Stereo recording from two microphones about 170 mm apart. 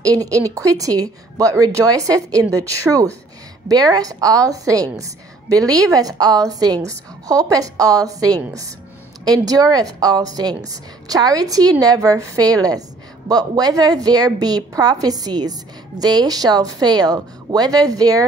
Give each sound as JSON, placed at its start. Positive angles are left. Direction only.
{"t": 0.0, "sound": "speech", "side_deg": -20}